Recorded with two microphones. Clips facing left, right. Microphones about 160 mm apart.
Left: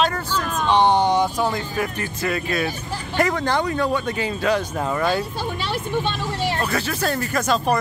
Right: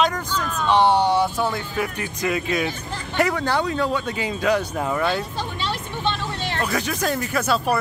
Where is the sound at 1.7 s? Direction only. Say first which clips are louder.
Left 1 dB; 15° right (ahead or behind).